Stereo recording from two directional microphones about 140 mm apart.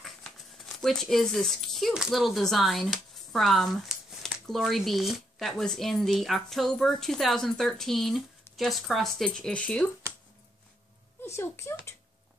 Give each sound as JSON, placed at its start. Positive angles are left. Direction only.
{"t": 0.7, "sound": "speech", "side_deg": 0}
{"t": 11.2, "sound": "speech", "side_deg": 20}